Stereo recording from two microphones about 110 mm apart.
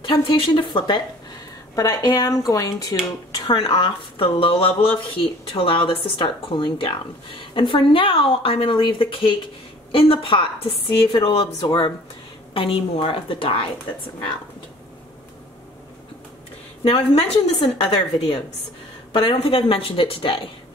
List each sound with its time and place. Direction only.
0.0 s speech: 50° left (ahead or behind)
1.8 s speech: 35° left (ahead or behind)
3.4 s a woman's voice: 45° left (ahead or behind)
16.8 s a woman's voice: 65° left (ahead or behind)
19.1 s a woman's voice: 55° left (ahead or behind)